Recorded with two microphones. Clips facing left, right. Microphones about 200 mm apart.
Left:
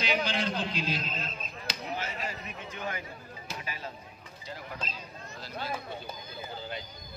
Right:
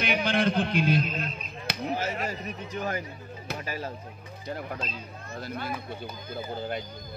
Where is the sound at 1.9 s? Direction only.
45° right (ahead or behind).